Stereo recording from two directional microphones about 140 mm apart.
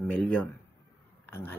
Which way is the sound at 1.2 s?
15° left (ahead or behind).